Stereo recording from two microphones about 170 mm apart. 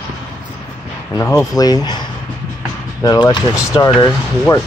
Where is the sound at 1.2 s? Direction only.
20° left (ahead or behind).